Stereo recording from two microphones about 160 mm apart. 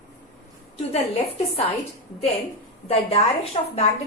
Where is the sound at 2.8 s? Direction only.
40° left (ahead or behind).